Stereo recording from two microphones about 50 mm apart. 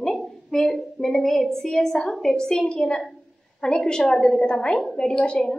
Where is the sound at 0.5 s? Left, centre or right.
Centre.